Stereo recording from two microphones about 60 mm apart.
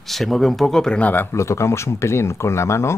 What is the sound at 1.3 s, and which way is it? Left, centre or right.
Speech, left.